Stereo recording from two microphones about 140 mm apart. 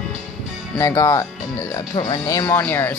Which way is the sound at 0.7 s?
20° left (ahead or behind).